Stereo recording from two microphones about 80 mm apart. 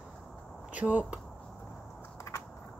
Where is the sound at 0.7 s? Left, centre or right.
Centre.